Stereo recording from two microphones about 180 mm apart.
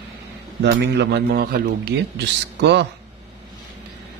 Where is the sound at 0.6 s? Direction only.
70° right (ahead or behind).